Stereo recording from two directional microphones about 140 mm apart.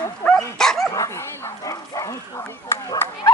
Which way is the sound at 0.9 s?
20° left (ahead or behind).